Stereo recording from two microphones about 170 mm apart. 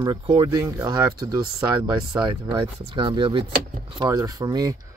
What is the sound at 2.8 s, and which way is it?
Speech, 30° right (ahead or behind).